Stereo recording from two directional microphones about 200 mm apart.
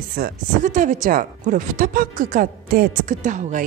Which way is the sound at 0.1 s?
45° right (ahead or behind).